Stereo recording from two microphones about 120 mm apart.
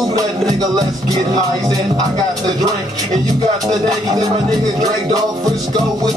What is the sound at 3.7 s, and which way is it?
Music, 30° right (ahead or behind).